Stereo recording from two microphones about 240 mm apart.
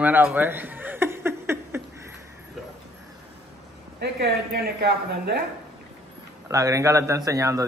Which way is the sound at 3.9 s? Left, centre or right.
Right.